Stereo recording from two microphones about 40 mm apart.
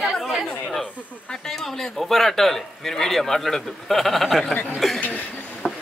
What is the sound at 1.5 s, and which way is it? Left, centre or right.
A man's voice, centre.